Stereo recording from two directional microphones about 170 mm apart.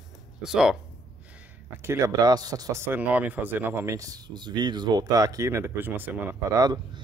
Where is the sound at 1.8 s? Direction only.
15° right (ahead or behind).